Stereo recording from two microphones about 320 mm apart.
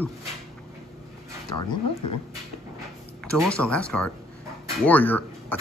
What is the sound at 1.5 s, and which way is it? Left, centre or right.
Speech, left.